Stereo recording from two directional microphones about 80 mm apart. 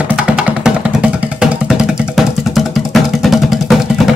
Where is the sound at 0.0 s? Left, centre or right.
Centre.